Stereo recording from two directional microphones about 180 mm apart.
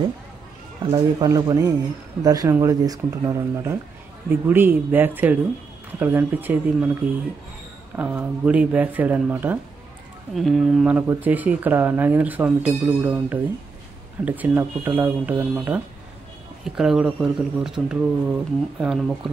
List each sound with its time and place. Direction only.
0.9 s speech: 20° right (ahead or behind)
10.3 s speech: centre (ahead or behind)